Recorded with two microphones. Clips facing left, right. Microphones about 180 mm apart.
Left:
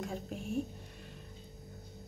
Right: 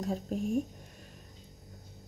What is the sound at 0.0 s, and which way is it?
Speech, 35° right (ahead or behind).